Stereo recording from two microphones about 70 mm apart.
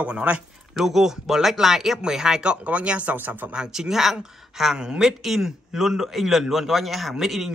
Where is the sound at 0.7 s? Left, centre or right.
Centre; by 3.5 s right.